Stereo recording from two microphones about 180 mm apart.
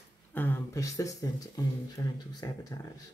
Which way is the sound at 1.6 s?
20° left (ahead or behind).